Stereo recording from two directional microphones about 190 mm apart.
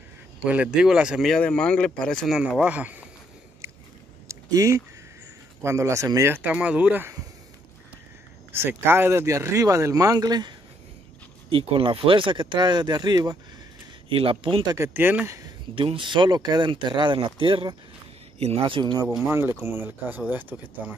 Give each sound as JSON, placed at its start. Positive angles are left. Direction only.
{"t": 0.5, "sound": "speech", "side_deg": -5}
{"t": 4.3, "sound": "a sound", "side_deg": -15}
{"t": 5.6, "sound": "speech", "side_deg": -15}
{"t": 8.5, "sound": "speech", "side_deg": -10}
{"t": 14.8, "sound": "speech", "side_deg": -10}
{"t": 15.7, "sound": "speech", "side_deg": -25}
{"t": 19.2, "sound": "speech", "side_deg": -15}